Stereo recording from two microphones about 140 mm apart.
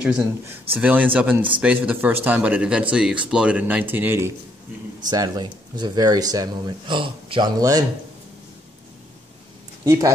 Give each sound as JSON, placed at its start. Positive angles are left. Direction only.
{"t": 0.0, "sound": "speech", "side_deg": -10}
{"t": 5.1, "sound": "speech", "side_deg": -25}
{"t": 9.8, "sound": "speech", "side_deg": -25}